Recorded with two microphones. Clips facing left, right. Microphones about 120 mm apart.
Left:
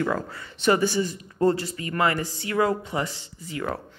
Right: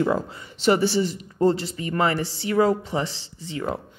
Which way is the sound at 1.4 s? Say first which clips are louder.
Right 1 dB; 25° right (ahead or behind).